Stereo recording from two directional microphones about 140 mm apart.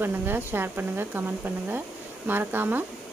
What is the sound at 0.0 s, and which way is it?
Speech, 15° right (ahead or behind).